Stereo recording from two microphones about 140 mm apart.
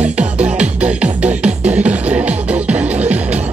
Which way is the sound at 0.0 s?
10° right (ahead or behind).